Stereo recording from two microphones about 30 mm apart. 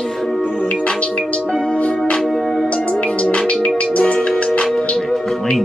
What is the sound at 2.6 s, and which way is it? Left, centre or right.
Music, left.